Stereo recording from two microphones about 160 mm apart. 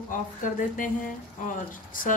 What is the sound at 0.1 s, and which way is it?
Speech, 55° left (ahead or behind).